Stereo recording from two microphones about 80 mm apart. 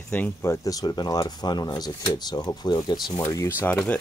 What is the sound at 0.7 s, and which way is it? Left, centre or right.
Speech, left.